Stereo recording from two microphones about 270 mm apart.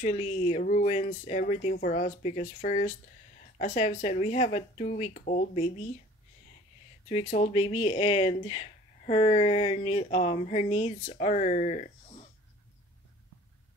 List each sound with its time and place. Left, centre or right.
0.0 s speech: left
7.1 s speech: left